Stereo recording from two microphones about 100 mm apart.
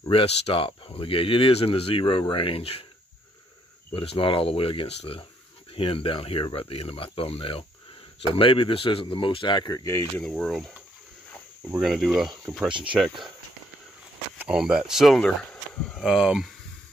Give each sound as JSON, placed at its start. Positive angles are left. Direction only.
{"t": 0.1, "sound": "speech", "side_deg": 70}
{"t": 3.9, "sound": "speech", "side_deg": 70}
{"t": 10.3, "sound": "speech", "side_deg": 0}
{"t": 11.8, "sound": "speech", "side_deg": 0}
{"t": 12.7, "sound": "speech", "side_deg": -55}
{"t": 14.5, "sound": "speech", "side_deg": -5}